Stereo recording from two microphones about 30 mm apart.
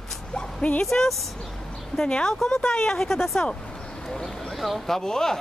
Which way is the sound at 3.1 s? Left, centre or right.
Centre.